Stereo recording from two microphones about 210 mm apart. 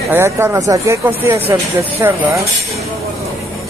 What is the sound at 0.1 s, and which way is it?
Speech, 10° right (ahead or behind).